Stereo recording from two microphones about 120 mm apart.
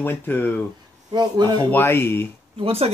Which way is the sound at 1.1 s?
35° right (ahead or behind).